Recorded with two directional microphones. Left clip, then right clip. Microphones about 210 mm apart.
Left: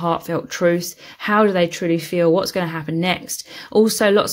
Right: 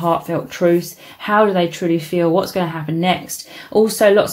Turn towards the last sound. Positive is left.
turn(degrees=45)  # may be behind; listen again after turning